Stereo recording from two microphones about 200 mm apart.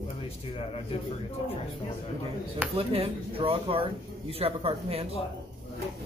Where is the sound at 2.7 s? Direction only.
30° right (ahead or behind).